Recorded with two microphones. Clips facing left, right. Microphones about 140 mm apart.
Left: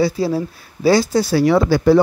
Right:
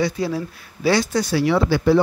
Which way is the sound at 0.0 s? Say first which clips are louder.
Left 4 dB; 35° left (ahead or behind).